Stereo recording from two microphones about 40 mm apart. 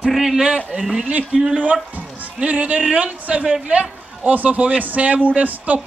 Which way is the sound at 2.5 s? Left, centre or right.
Right.